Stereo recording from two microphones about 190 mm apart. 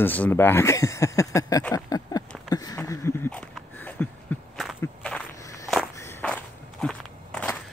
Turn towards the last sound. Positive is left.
turn(degrees=5)  # may be behind; listen again after turning